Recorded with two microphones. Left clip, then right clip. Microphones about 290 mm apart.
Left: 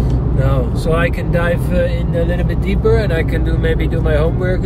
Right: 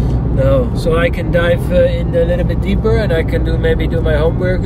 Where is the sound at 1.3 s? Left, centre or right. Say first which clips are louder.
Right 4 dB; centre.